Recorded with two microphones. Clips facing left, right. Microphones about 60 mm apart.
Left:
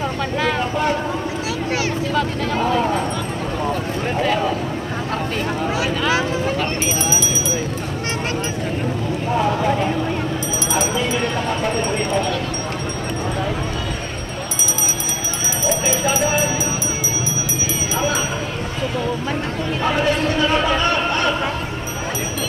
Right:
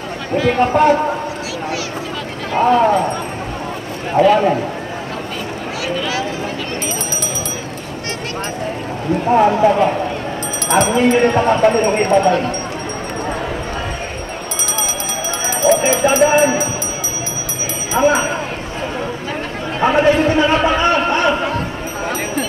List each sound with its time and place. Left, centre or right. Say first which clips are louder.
0.6 s speech: right 8 dB; right
4.2 s speech: right 9 dB; right
9.3 s speech: right 7 dB; right
10.7 s speech: right 9 dB; right
15.4 s a sound: right 8 dB; right
17.9 s speech: right 9 dB; right
19.8 s a man's voice: right 7 dB; right